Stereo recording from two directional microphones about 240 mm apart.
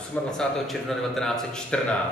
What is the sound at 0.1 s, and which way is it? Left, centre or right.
A man's voice, centre.